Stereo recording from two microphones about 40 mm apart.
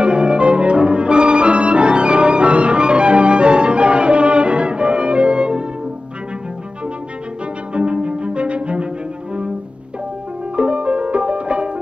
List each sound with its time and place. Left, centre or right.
0.0 s music: right
7.7 s cello: right
10.5 s music: right